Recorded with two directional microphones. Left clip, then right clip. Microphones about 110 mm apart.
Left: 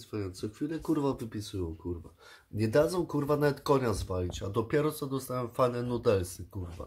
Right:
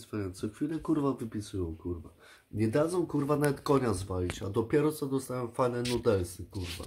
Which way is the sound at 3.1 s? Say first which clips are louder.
Left 2 dB; centre (ahead or behind).